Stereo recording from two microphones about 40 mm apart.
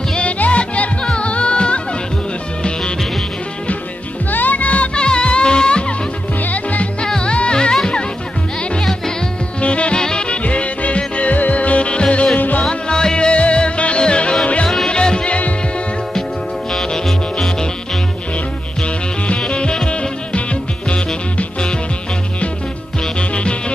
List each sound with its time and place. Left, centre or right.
0.4 s music: left
4.3 s music: left
4.9 s music: left
6.4 s music: left
7.1 s music: left
9.6 s music: left
12.4 s music: left
12.6 s music: left
16.7 s music: centre
18.8 s music: left